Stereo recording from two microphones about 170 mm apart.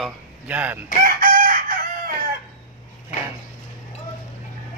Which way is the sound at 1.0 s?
50° right (ahead or behind).